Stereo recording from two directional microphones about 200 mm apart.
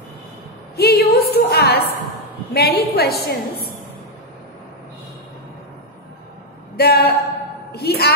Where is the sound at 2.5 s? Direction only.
50° left (ahead or behind).